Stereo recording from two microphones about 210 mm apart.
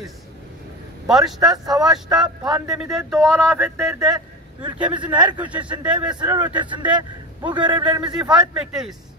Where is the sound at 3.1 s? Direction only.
5° left (ahead or behind).